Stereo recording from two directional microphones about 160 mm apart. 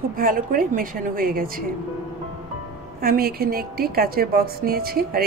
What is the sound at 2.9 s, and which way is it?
A woman's voice, 70° right (ahead or behind).